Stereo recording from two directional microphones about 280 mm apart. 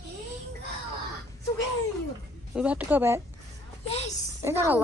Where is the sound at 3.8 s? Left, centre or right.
Left.